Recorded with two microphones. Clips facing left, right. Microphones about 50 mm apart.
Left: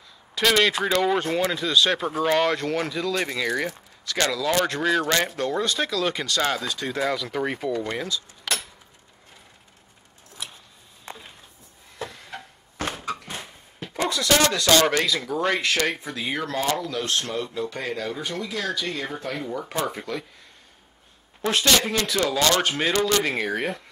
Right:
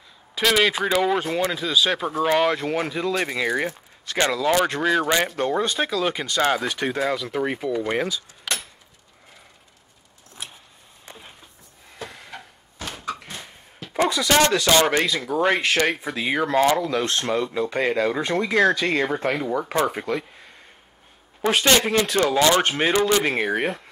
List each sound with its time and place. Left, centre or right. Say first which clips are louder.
0.4 s speech: right 1 dB; centre
8.5 s a sound: even; centre
12.2 s a sound: left 1 dB; centre
12.9 s cupboard open or close: even; centre
13.9 s speech: right 3 dB; centre
14.7 s speech: right 1 dB; centre
16.9 s speech: right 4 dB; right
19.7 s speech: right 4 dB; right
21.4 s a man's voice: right 3 dB; centre